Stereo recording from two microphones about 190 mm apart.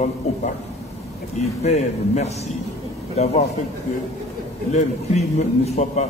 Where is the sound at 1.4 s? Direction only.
35° left (ahead or behind).